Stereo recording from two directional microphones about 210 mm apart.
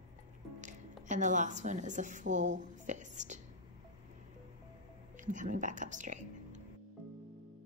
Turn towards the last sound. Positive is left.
turn(degrees=-35)  # may be behind; listen again after turning